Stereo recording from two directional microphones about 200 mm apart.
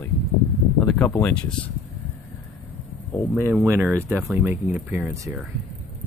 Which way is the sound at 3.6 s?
10° right (ahead or behind).